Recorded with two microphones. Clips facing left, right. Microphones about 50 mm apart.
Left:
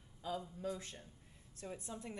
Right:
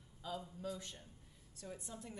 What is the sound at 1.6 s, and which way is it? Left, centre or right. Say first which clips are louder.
Speech: left 3 dB; left.